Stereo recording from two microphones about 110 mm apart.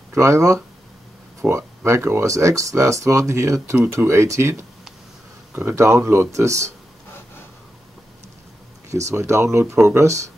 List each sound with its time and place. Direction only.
0.1 s speech: 25° right (ahead or behind)
1.4 s speech: 10° right (ahead or behind)
1.9 s speech: 25° right (ahead or behind)
8.9 s speech: 25° right (ahead or behind)